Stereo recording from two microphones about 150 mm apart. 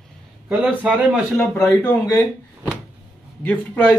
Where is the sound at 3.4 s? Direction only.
10° left (ahead or behind).